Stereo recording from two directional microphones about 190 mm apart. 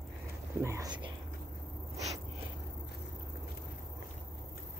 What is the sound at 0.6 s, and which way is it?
Speech, 15° right (ahead or behind).